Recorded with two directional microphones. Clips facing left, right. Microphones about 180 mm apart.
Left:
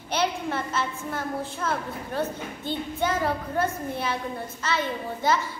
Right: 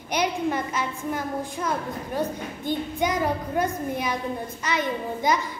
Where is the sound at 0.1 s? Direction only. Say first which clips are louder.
Right 2 dB; 15° right (ahead or behind).